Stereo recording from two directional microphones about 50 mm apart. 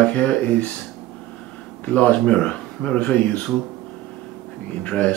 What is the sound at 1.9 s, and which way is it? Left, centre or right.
Speech, left.